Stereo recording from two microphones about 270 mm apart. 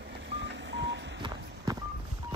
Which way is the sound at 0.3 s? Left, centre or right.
Right.